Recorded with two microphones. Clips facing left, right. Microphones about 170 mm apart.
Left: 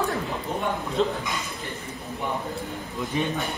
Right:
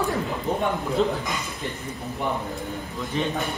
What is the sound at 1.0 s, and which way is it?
Speech, centre (ahead or behind).